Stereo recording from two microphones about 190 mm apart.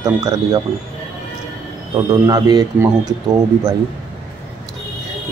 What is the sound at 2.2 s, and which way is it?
Speech, 20° right (ahead or behind).